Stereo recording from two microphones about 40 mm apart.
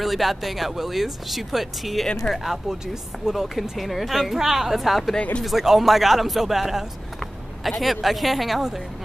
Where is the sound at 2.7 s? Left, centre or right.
Centre.